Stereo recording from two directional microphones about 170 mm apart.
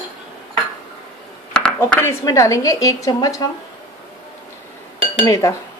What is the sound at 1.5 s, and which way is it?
Speech, 5° left (ahead or behind).